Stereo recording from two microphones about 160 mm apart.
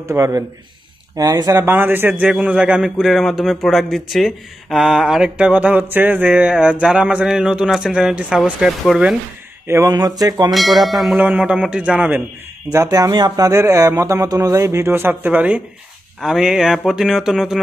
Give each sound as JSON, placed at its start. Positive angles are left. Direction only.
{"t": 0.0, "sound": "a man's voice", "side_deg": -20}
{"t": 9.7, "sound": "speech", "side_deg": -20}
{"t": 10.5, "sound": "a man's voice", "side_deg": 0}
{"t": 12.7, "sound": "a man's voice", "side_deg": -20}